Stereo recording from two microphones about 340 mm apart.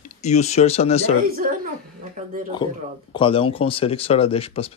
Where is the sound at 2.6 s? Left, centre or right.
Centre.